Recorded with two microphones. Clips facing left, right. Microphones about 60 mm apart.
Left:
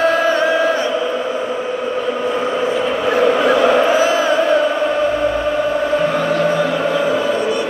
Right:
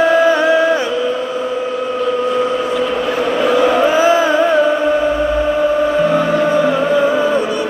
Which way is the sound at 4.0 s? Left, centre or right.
Right.